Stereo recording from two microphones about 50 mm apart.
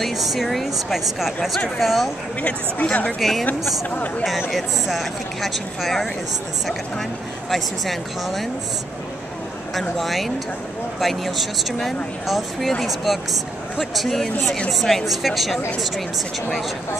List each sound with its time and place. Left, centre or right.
0.0 s speech: centre
2.4 s speech: left
3.2 s speech: centre
4.5 s speech: centre
7.5 s speech: centre
9.8 s speech: centre